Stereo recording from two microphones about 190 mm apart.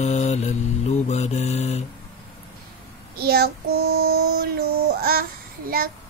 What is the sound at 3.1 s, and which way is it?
Child singing, 55° right (ahead or behind).